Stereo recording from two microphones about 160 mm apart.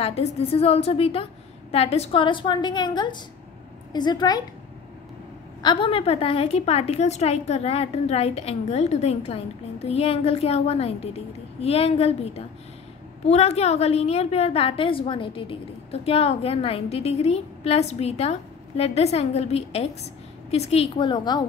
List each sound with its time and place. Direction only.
0.0 s a woman's voice: 40° left (ahead or behind)
5.6 s a woman's voice: 30° left (ahead or behind)